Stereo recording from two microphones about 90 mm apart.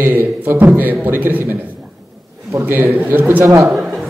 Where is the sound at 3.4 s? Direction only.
35° right (ahead or behind).